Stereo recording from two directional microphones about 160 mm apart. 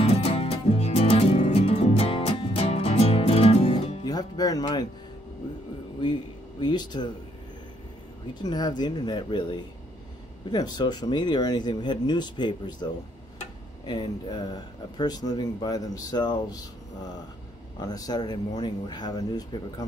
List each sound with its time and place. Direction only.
0.0 s music: 40° left (ahead or behind)
4.0 s speech: 25° left (ahead or behind)
6.6 s speech: 25° left (ahead or behind)
8.4 s speech: 25° left (ahead or behind)